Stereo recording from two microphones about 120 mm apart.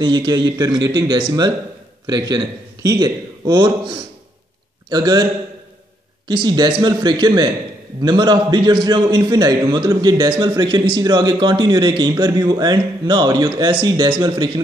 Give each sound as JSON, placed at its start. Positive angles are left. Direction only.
{"t": 0.0, "sound": "a man's voice", "side_deg": -35}